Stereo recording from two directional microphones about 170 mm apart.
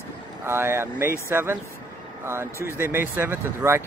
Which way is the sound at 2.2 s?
15° right (ahead or behind).